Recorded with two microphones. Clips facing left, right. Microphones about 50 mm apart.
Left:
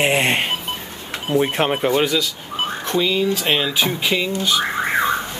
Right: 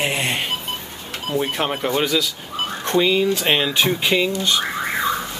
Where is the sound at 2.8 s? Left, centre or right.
Centre.